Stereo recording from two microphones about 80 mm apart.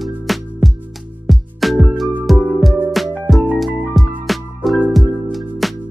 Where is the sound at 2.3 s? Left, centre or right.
Centre.